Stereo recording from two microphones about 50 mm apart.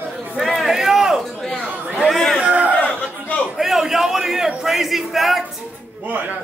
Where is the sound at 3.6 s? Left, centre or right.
Centre.